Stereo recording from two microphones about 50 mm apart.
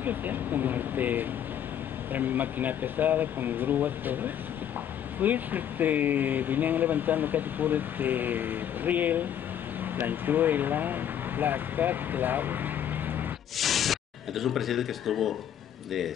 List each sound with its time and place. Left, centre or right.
0.0 s speech: right
13.6 s speech: centre